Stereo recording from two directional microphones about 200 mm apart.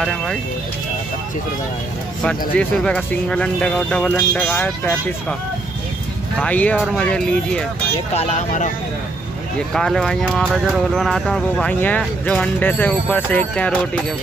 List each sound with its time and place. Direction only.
0.0 s speech: centre (ahead or behind)
2.5 s speech: 5° left (ahead or behind)
6.3 s speech: 5° left (ahead or behind)
8.1 s speech: 35° left (ahead or behind)
9.8 s speech: centre (ahead or behind)